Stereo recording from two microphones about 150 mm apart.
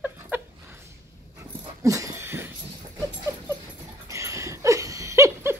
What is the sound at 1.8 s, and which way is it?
Wheeze, 20° right (ahead or behind).